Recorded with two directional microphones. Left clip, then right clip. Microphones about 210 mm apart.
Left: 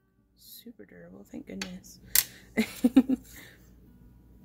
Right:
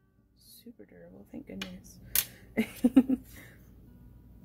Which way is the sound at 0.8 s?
15° left (ahead or behind).